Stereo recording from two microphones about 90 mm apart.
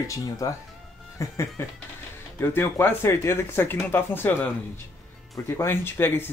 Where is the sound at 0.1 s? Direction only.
40° left (ahead or behind); by 4.5 s 20° left (ahead or behind).